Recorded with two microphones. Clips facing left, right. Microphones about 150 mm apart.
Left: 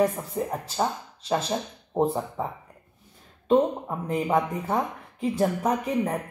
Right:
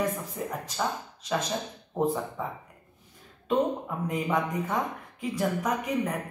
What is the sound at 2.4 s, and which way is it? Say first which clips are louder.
Speech: left 3 dB; 30° left (ahead or behind).